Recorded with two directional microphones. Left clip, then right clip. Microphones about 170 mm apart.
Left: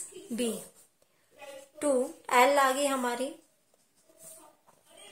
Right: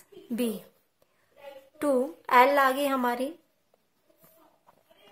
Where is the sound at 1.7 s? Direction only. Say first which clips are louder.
Right 2 dB; 30° right (ahead or behind).